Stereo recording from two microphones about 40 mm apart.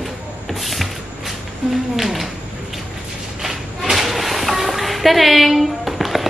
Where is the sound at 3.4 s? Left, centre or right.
Centre.